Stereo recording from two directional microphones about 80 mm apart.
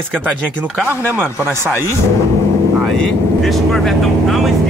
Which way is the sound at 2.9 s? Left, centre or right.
Centre.